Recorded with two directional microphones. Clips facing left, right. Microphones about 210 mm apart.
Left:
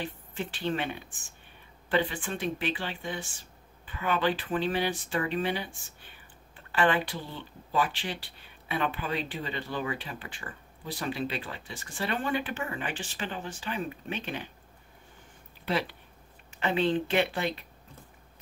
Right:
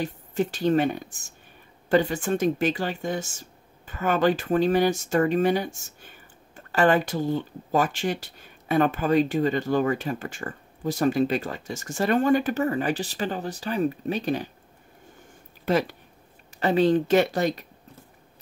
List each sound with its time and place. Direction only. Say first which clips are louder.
0.0 s speech: right 9 dB; 40° right (ahead or behind)
15.6 s speech: right 7 dB; 45° right (ahead or behind)